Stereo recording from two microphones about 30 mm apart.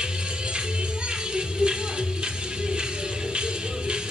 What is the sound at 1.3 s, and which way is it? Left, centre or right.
Music, right.